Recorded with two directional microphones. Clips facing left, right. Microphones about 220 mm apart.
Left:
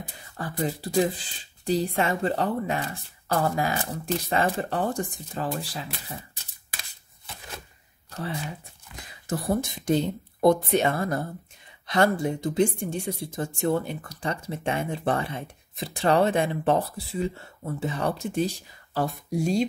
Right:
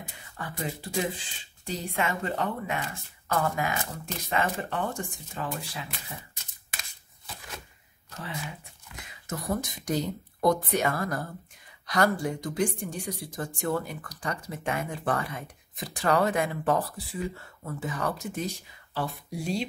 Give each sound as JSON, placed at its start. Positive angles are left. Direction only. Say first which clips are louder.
{"t": 0.4, "sound": "speech", "louder": "left 6 dB", "side_deg": 35}
{"t": 8.9, "sound": "speech", "louder": "left 6 dB", "side_deg": 30}
{"t": 18.9, "sound": "speech", "louder": "left 6 dB", "side_deg": 45}